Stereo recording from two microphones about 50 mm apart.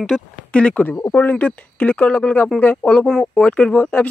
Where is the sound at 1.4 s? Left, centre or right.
Left.